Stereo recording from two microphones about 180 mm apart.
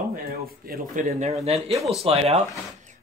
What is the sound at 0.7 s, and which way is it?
A man's voice, 45° right (ahead or behind).